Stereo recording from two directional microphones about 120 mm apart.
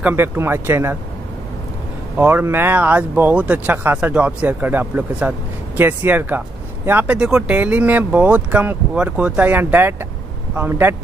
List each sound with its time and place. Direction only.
0.0 s speech: 20° right (ahead or behind)
2.1 s speech: 15° right (ahead or behind)